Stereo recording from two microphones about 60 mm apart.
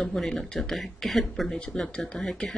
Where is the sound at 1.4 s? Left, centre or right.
Centre.